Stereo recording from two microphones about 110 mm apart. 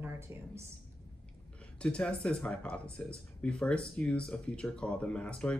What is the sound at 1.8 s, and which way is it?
Speech, 10° left (ahead or behind).